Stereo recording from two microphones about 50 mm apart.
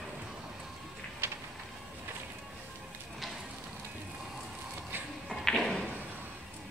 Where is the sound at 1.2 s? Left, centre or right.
Right.